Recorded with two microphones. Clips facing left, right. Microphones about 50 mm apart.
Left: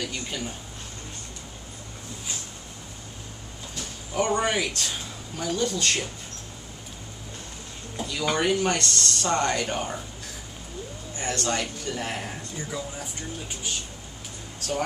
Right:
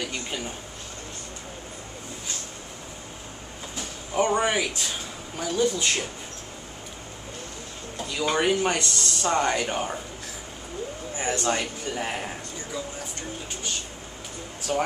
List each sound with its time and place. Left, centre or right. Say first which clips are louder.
0.0 s speech: right 1 dB; centre
3.7 s speech: right 2 dB; centre
8.0 s speech: right 1 dB; centre
11.1 s speech: right 2 dB; centre